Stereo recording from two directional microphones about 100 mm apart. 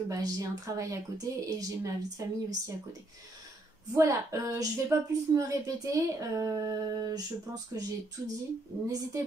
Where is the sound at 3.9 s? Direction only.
30° right (ahead or behind).